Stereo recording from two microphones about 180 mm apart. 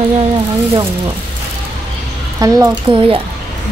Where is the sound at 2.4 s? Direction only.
20° right (ahead or behind).